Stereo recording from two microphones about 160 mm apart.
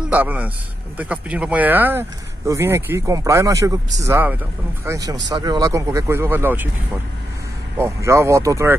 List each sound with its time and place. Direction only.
0.1 s speech: 10° right (ahead or behind)
7.7 s speech: 15° right (ahead or behind)